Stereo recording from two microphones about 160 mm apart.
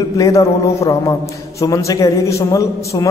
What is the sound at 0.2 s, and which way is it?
A man's voice, 20° left (ahead or behind).